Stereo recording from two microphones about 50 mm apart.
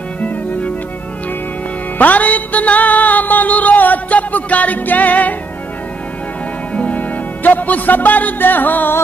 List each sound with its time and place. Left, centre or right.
0.2 s music: left
2.0 s music: left
6.7 s music: left